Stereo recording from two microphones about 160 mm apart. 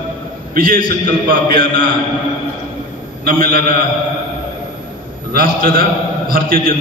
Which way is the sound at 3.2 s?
65° right (ahead or behind).